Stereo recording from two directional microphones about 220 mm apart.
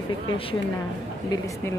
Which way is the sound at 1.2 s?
15° left (ahead or behind).